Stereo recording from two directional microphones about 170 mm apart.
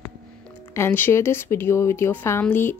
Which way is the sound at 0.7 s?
15° left (ahead or behind).